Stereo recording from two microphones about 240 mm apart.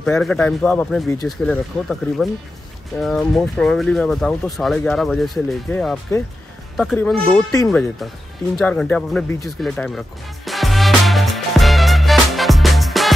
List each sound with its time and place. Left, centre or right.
0.0 s speech: centre
9.6 s music: centre